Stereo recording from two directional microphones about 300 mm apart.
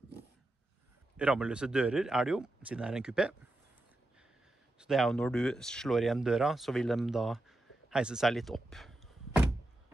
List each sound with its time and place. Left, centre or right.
1.1 s speech: centre
4.7 s speech: centre